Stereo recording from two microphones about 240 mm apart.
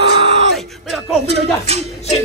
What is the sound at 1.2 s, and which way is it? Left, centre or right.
Speech, right.